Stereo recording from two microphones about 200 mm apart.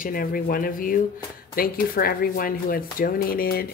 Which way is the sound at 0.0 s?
45° left (ahead or behind).